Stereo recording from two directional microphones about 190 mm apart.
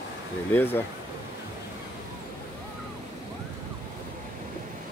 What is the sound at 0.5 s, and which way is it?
Speech, 10° left (ahead or behind).